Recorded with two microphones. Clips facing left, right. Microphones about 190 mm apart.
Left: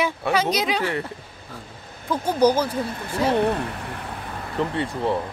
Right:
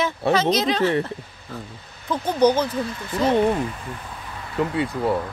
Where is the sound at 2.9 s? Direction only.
55° left (ahead or behind).